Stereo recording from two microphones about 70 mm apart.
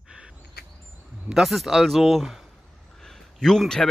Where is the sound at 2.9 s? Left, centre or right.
Centre.